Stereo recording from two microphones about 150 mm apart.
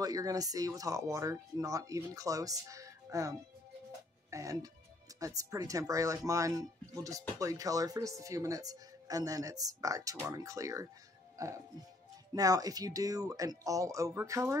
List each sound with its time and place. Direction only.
0.0 s speech: 25° right (ahead or behind)